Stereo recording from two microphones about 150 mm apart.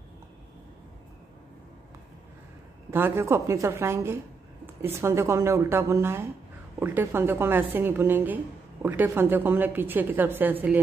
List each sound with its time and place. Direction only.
2.9 s a woman's voice: 15° right (ahead or behind)